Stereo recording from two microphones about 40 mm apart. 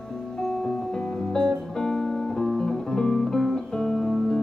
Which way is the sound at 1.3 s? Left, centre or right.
Centre.